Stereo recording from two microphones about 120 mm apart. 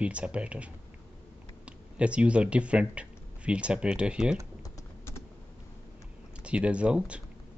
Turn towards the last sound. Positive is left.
turn(degrees=-10)  # may be behind; listen again after turning